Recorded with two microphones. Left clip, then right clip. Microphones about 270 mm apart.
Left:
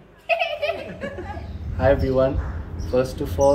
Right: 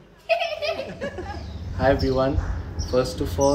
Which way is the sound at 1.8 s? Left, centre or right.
Centre.